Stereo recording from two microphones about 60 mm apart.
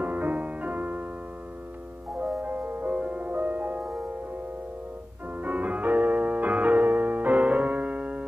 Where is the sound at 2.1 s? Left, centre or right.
Right.